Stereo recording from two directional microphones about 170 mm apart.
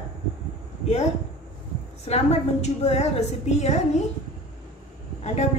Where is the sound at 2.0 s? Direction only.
40° left (ahead or behind).